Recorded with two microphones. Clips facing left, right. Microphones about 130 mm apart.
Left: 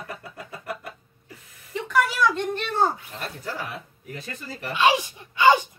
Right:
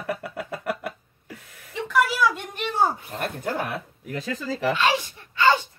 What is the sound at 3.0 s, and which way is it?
Speech, 55° right (ahead or behind).